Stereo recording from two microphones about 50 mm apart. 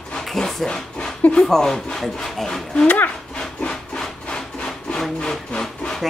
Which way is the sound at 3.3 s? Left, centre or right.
Centre.